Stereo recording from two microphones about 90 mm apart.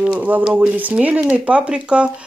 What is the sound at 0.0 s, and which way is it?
Speech, 15° right (ahead or behind).